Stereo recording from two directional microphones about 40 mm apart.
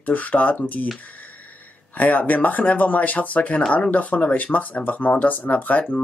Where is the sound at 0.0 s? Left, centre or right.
Left.